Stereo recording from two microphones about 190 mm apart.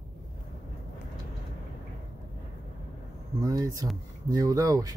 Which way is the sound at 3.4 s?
20° right (ahead or behind).